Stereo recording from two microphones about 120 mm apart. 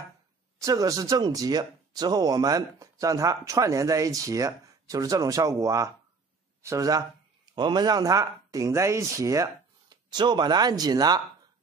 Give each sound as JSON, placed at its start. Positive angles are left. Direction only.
{"t": 0.6, "sound": "speech", "side_deg": -30}